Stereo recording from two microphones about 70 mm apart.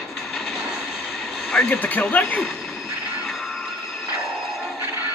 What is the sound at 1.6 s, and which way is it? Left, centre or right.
Speech, left.